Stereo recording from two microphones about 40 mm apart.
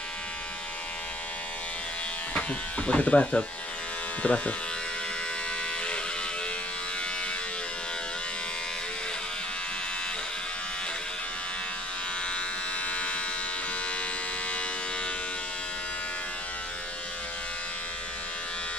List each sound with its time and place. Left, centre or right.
2.9 s speech: left
12.9 s electric shaver: left